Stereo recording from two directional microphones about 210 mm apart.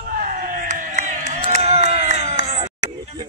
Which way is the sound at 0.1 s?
45° right (ahead or behind).